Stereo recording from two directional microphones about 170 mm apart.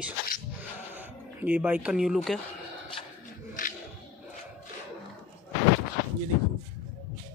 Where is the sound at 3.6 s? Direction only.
50° left (ahead or behind).